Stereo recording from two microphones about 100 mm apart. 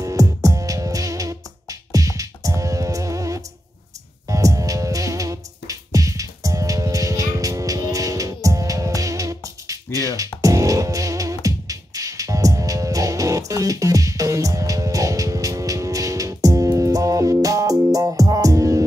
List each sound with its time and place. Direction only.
0.0 s music: 35° right (ahead or behind)